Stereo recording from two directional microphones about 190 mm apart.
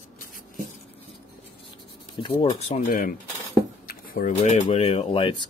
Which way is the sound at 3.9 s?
50° left (ahead or behind).